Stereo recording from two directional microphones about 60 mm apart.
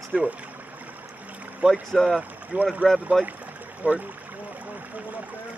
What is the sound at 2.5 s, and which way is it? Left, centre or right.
Speech, centre.